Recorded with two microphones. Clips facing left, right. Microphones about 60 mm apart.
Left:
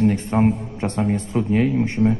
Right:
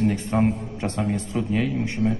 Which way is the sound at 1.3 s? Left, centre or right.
Centre.